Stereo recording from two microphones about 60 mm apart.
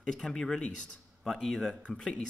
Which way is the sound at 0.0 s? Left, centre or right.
Centre.